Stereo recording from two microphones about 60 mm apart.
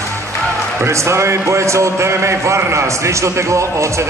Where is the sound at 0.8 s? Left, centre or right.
Right.